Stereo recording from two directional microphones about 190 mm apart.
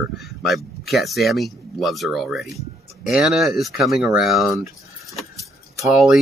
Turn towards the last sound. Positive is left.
turn(degrees=0)  # may be behind; listen again after turning